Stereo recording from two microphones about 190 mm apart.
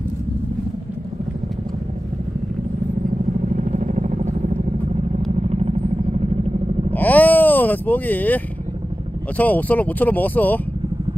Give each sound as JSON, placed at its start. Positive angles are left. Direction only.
{"t": 3.4, "sound": "vehicle", "side_deg": -40}
{"t": 6.9, "sound": "a sound", "side_deg": 10}
{"t": 9.4, "sound": "speech", "side_deg": 10}